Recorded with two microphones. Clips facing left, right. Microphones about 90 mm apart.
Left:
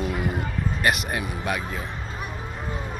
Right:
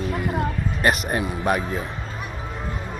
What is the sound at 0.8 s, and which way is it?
Speech, 35° right (ahead or behind).